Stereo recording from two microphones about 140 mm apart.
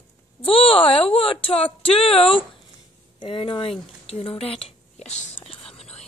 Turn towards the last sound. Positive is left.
turn(degrees=45)  # may be behind; listen again after turning